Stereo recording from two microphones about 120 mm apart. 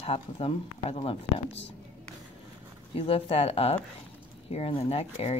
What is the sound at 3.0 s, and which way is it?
Speech, 50° left (ahead or behind).